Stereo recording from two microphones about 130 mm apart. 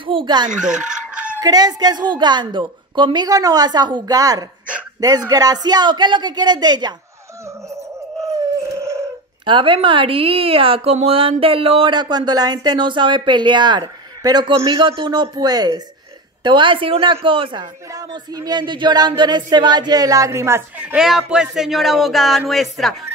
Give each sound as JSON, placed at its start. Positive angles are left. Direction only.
{"t": 0.0, "sound": "a woman's voice", "side_deg": -40}
{"t": 0.5, "sound": "speech", "side_deg": -70}
{"t": 0.8, "sound": "chicken", "side_deg": -5}
{"t": 1.4, "sound": "a woman's voice", "side_deg": -30}
{"t": 8.7, "sound": "a sound", "side_deg": -20}
{"t": 9.4, "sound": "a woman's voice", "side_deg": -40}
{"t": 17.9, "sound": "a sound", "side_deg": -30}
{"t": 22.5, "sound": "speech", "side_deg": 0}